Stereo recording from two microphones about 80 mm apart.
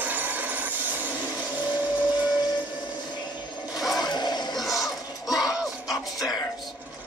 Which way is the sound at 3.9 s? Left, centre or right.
Left.